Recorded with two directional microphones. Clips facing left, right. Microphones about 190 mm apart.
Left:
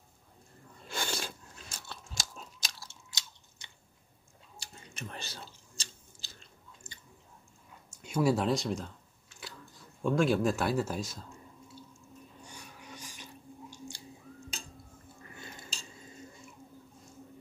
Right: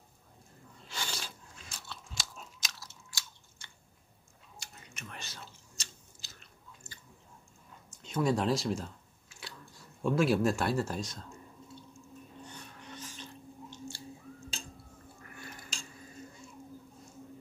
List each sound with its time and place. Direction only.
0.8 s crunch: 50° left (ahead or behind)
2.6 s biting: 30° left (ahead or behind)
4.6 s chewing: 30° left (ahead or behind)
6.8 s chewing: 20° left (ahead or behind)
7.9 s camera: 10° left (ahead or behind)
12.4 s chewing: 10° left (ahead or behind)
15.3 s dishes: 25° left (ahead or behind)